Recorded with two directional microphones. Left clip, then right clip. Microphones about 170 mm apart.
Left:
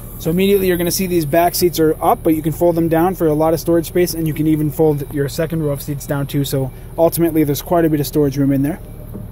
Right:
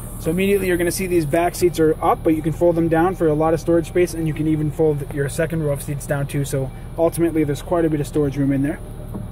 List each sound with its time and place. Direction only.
0.2 s speech: 35° left (ahead or behind)
5.1 s speech: 35° left (ahead or behind)